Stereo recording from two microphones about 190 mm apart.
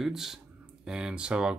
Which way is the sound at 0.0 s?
Centre (ahead or behind).